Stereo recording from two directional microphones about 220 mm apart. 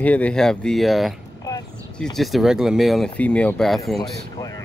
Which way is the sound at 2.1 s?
Centre (ahead or behind).